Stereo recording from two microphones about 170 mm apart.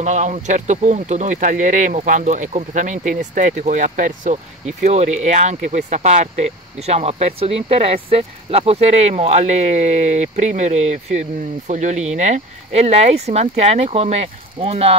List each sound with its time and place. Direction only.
0.0 s speech: 40° right (ahead or behind)